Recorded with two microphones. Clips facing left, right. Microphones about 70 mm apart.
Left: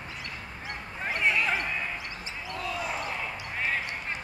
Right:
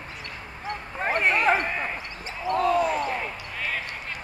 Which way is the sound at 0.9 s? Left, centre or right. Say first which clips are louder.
Right 4 dB; right.